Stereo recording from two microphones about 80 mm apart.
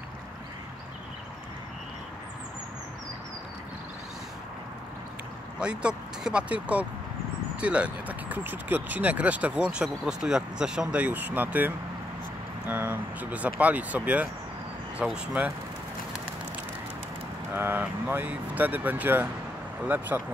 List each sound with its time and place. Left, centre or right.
5.6 s speech: centre
11.0 s speech: right
17.6 s speech: right